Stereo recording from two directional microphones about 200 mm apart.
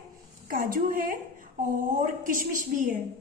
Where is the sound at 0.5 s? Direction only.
45° right (ahead or behind).